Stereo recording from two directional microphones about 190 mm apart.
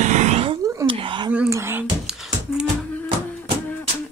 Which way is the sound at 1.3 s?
10° right (ahead or behind).